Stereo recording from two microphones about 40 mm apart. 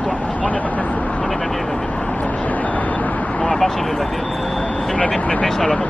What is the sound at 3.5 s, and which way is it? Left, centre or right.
Speech, centre.